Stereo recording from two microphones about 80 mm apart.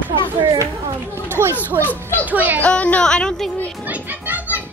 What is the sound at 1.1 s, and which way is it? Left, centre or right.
Speech, right.